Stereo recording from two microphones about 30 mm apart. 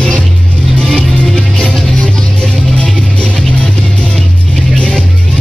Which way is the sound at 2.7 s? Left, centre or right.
Left.